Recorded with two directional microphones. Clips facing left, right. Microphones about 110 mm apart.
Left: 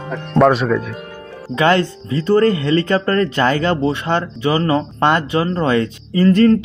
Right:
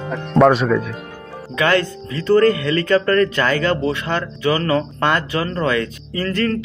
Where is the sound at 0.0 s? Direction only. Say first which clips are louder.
Even; centre (ahead or behind).